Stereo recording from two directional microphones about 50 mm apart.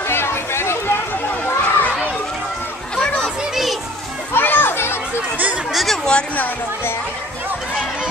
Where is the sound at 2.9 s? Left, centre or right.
Centre.